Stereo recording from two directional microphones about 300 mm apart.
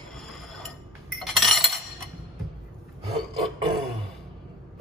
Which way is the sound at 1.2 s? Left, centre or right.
Centre.